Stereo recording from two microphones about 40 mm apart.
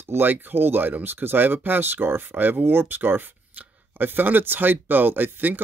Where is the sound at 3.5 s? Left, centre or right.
Right.